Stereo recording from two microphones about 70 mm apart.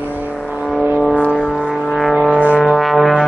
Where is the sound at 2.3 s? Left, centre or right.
Left.